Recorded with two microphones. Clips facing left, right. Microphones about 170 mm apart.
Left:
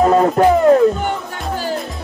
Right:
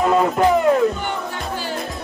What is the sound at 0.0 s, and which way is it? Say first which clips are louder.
Music: left 4 dB; 40° left (ahead or behind).